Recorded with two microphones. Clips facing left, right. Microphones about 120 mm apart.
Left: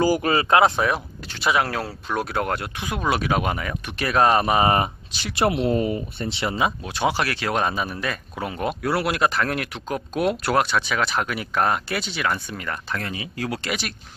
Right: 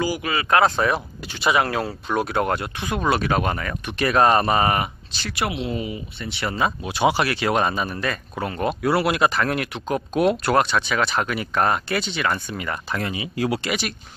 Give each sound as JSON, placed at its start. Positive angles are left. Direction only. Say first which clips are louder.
{"t": 0.0, "sound": "speech", "louder": "left 5 dB", "side_deg": 40}
{"t": 0.5, "sound": "speech", "louder": "even", "side_deg": 25}
{"t": 0.7, "sound": "speech", "louder": "right 1 dB", "side_deg": 0}
{"t": 4.6, "sound": "speech", "louder": "left 1 dB", "side_deg": 25}
{"t": 5.1, "sound": "speech", "louder": "even", "side_deg": 10}
{"t": 5.7, "sound": "speech", "louder": "left 6 dB", "side_deg": 45}
{"t": 6.2, "sound": "speech", "louder": "even", "side_deg": 30}
{"t": 6.8, "sound": "speech", "louder": "right 3 dB", "side_deg": -5}
{"t": 12.5, "sound": "speech", "louder": "right 2 dB", "side_deg": -15}
{"t": 13.7, "sound": "speech", "louder": "right 3 dB", "side_deg": 0}